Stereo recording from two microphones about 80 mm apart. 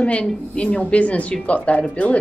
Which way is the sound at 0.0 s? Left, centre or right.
Centre.